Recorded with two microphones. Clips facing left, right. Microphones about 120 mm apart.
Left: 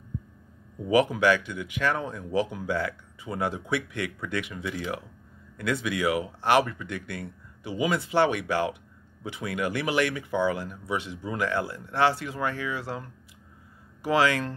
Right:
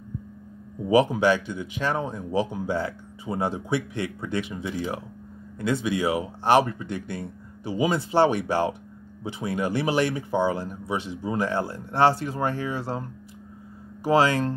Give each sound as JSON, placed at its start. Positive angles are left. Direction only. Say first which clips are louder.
{"t": 0.8, "sound": "speech", "louder": "right 2 dB", "side_deg": -25}